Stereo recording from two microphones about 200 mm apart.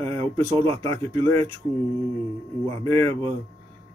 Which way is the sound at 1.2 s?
15° left (ahead or behind).